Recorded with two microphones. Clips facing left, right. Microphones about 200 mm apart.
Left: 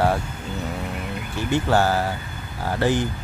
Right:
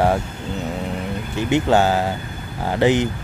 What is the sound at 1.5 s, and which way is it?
Speech, 20° right (ahead or behind).